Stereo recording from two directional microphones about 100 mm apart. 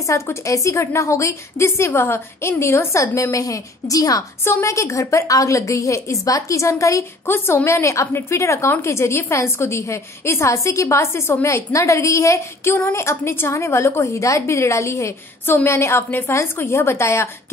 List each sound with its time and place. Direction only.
0.0 s a woman's voice: 30° left (ahead or behind)